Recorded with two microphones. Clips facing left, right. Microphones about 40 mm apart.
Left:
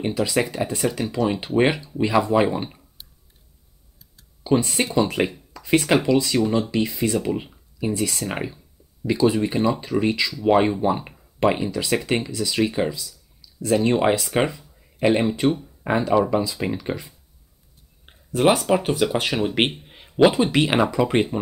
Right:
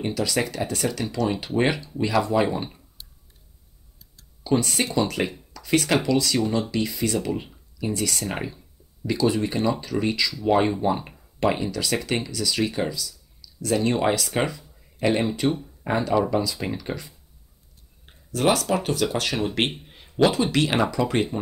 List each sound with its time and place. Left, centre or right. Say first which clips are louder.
0.0 s speech: left 3 dB; centre
2.4 s clicking: left 3 dB; centre
4.2 s tick-tock: left 3 dB; centre
4.6 s speech: left 3 dB; centre
15.8 s speech: left 3 dB; centre
19.9 s a sound: left 4 dB; centre
20.5 s speech: left 3 dB; centre